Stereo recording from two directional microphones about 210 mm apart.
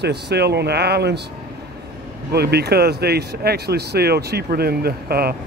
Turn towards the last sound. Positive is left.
turn(degrees=-45)  # may be behind; listen again after turning